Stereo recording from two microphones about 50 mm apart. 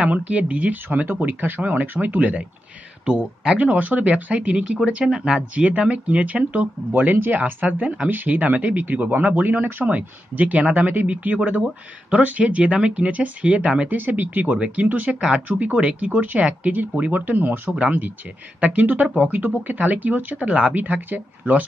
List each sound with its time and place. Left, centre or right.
0.0 s speech: right
0.8 s speech: right
5.0 s speech: centre
5.5 s speech: right
9.8 s speech: right
13.9 s speech: right
15.1 s speech: right
18.6 s speech: right
20.7 s speech: right